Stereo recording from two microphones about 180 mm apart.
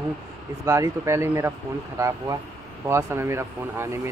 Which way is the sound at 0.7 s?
15° right (ahead or behind).